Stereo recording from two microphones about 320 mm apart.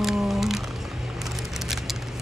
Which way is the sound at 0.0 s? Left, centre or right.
Centre.